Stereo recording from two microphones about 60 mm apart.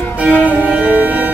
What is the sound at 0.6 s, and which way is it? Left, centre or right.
Music, right.